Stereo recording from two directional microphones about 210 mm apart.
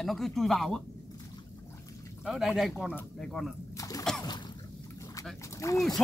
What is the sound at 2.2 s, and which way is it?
Speech, centre (ahead or behind).